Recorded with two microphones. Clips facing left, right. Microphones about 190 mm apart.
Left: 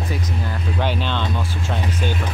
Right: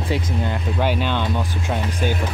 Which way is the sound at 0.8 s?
10° right (ahead or behind).